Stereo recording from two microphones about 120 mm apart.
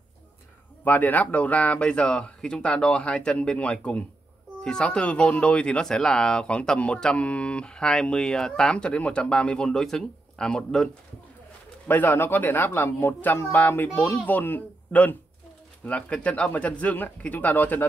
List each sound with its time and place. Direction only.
0.8 s speech: 15° left (ahead or behind)
11.9 s speech: 15° left (ahead or behind)